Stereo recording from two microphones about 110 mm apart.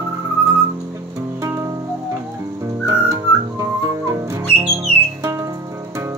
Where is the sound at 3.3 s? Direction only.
30° right (ahead or behind).